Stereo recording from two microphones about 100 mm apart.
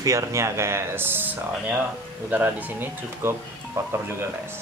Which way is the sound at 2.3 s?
20° right (ahead or behind).